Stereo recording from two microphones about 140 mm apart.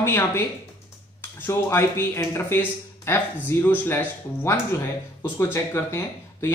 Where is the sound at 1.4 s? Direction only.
20° left (ahead or behind).